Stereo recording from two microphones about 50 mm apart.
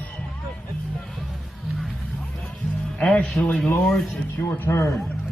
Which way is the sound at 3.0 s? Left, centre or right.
Left.